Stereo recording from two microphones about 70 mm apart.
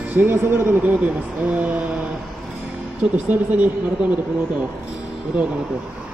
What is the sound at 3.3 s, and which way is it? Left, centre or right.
Speech, right.